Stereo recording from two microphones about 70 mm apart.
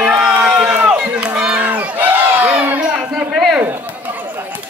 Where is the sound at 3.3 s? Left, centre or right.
Centre.